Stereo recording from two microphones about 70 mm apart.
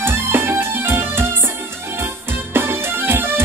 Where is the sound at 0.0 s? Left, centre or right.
Right.